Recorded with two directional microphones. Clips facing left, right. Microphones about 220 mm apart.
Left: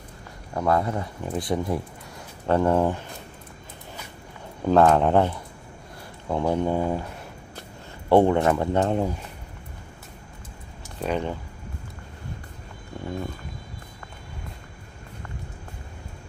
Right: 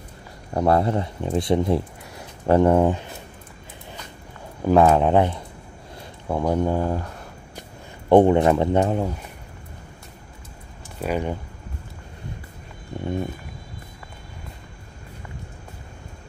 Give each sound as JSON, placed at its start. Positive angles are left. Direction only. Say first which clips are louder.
{"t": 0.6, "sound": "speech", "louder": "right 4 dB", "side_deg": -30}
{"t": 4.6, "sound": "speech", "louder": "right 2 dB", "side_deg": -10}
{"t": 6.5, "sound": "speech", "louder": "right 2 dB", "side_deg": -10}
{"t": 6.8, "sound": "speech", "louder": "right 1 dB", "side_deg": 10}
{"t": 8.1, "sound": "speech", "louder": "right 3 dB", "side_deg": -15}
{"t": 8.8, "sound": "speech", "louder": "even", "side_deg": 0}
{"t": 11.0, "sound": "speech", "louder": "right 2 dB", "side_deg": -10}
{"t": 12.9, "sound": "a sound", "louder": "right 4 dB", "side_deg": -20}